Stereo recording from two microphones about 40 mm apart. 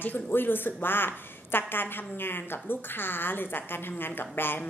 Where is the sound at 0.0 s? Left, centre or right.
Left.